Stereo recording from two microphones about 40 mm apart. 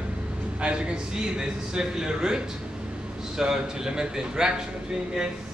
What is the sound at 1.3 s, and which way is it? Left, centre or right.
A man's voice, centre.